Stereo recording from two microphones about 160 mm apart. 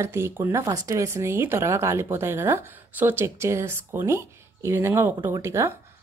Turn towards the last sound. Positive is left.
turn(degrees=-15)  # may be behind; listen again after turning